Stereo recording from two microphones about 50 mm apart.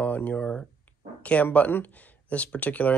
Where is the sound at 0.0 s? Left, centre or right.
Left.